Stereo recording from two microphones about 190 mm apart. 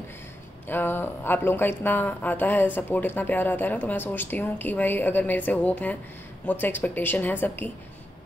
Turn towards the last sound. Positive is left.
turn(degrees=10)  # may be behind; listen again after turning